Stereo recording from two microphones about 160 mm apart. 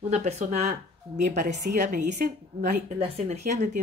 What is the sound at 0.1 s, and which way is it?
Speech, 45° right (ahead or behind).